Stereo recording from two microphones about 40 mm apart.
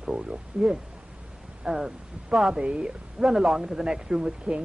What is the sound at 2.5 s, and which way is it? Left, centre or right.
Speech, right.